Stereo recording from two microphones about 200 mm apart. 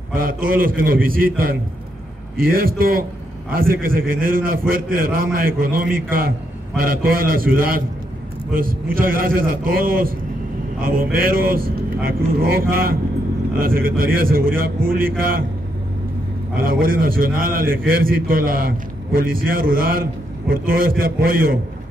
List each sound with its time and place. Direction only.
0.1 s a man's voice: 45° right (ahead or behind)
16.5 s a man's voice: 45° right (ahead or behind)